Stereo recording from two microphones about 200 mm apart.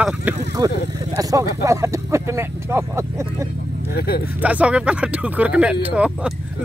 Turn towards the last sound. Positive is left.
turn(degrees=-5)  # may be behind; listen again after turning